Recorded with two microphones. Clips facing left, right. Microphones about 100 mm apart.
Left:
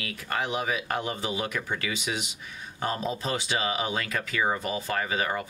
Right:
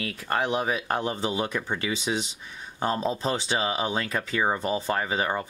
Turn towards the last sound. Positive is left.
turn(degrees=-30)  # may be behind; listen again after turning